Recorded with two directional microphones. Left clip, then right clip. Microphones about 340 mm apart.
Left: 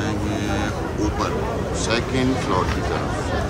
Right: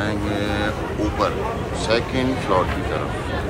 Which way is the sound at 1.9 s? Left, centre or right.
Centre.